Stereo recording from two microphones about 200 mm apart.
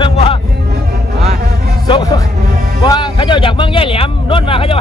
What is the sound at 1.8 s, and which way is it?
A man's voice, 20° left (ahead or behind).